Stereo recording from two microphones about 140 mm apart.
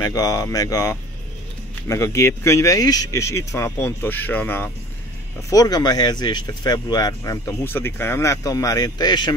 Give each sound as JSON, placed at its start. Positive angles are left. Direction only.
{"t": 0.0, "sound": "speech", "side_deg": 25}
{"t": 5.5, "sound": "speech", "side_deg": 25}